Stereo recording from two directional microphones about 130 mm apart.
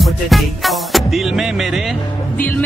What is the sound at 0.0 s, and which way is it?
Music, centre (ahead or behind).